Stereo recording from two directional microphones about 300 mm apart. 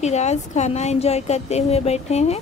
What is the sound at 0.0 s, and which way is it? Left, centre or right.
A woman's voice, left.